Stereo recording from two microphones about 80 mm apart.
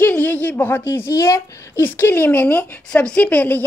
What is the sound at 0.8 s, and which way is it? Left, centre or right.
Speech, left.